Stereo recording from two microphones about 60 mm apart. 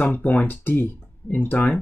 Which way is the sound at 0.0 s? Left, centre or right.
Left.